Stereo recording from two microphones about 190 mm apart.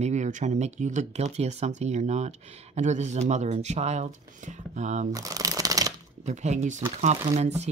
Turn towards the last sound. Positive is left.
turn(degrees=-35)  # may be behind; listen again after turning